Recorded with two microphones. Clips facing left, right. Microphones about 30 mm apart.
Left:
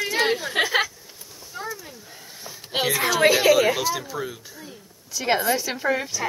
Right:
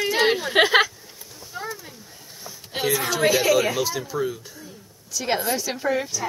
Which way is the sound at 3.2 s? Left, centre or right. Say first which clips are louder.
Left 3 dB; left.